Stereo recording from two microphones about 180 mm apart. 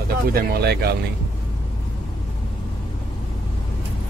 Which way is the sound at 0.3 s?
60° right (ahead or behind).